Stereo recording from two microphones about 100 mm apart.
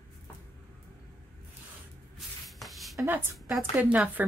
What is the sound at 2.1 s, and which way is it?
Shuffle, centre (ahead or behind).